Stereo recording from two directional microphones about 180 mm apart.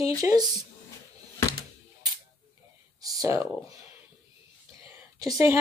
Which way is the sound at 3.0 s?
20° right (ahead or behind).